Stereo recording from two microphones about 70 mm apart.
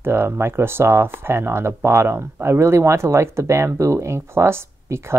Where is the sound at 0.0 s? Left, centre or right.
Right.